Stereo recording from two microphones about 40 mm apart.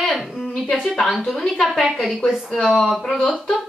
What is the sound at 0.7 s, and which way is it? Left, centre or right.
A woman's voice, centre.